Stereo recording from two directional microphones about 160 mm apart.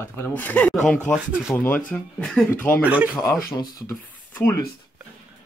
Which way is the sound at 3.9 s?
15° left (ahead or behind).